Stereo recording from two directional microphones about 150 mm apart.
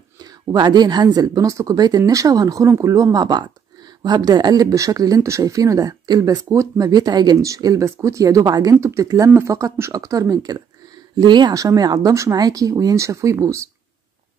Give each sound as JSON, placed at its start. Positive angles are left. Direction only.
{"t": 0.2, "sound": "speech", "side_deg": -25}